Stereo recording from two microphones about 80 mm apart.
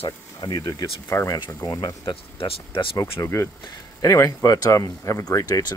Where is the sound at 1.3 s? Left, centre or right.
Left.